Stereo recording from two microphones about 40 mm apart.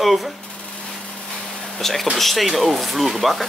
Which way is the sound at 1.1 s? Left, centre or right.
Left.